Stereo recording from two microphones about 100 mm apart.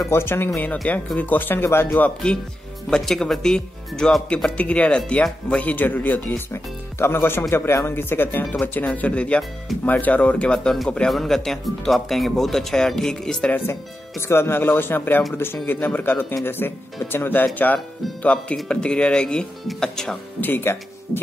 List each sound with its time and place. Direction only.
0.0 s speech: 25° left (ahead or behind); by 13.6 s 10° left (ahead or behind)
14.2 s speech: 25° left (ahead or behind); by 20.2 s 5° left (ahead or behind)
20.3 s speech: 20° left (ahead or behind)